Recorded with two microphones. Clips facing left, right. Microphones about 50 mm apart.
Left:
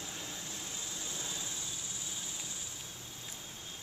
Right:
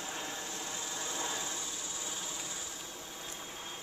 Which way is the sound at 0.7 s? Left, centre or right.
Right.